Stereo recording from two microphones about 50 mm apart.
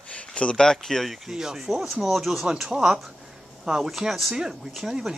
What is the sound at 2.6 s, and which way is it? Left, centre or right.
Speech, centre.